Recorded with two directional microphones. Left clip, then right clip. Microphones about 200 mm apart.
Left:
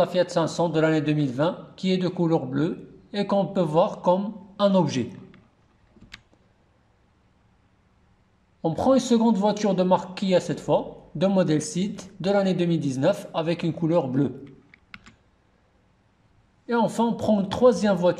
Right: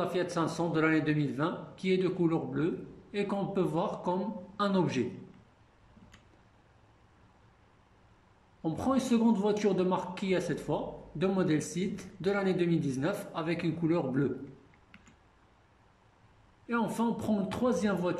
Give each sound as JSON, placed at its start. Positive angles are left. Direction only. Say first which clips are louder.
{"t": 0.0, "sound": "a man's voice", "louder": "left 9 dB", "side_deg": 40}
{"t": 8.6, "sound": "a man's voice", "louder": "left 10 dB", "side_deg": 40}
{"t": 16.6, "sound": "a man's voice", "louder": "left 9 dB", "side_deg": 45}